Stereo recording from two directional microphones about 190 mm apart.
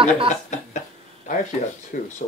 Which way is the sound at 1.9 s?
50° left (ahead or behind).